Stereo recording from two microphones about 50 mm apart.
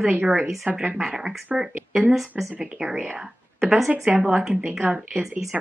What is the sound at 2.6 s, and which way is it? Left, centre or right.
Speech, centre.